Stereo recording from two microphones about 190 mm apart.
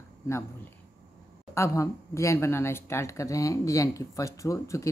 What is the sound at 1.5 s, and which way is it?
A woman's voice, 15° left (ahead or behind).